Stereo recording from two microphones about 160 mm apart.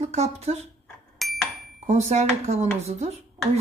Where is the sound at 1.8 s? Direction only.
45° right (ahead or behind).